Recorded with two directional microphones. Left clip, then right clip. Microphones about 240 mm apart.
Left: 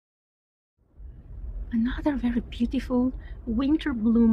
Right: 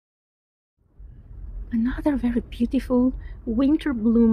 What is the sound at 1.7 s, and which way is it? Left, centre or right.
A woman's voice, centre.